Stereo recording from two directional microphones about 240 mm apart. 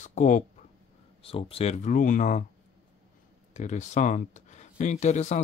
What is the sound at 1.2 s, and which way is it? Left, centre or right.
Speech, left.